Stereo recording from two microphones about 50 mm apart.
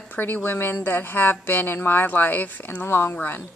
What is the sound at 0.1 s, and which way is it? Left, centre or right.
Speech, left.